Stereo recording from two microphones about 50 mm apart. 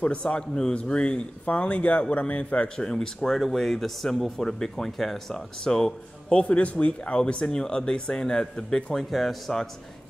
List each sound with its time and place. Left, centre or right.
0.0 s a man's voice: left
6.2 s speech: left; by 9.7 s centre